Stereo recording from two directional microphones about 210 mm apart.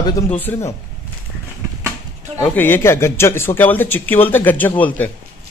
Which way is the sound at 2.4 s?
10° left (ahead or behind).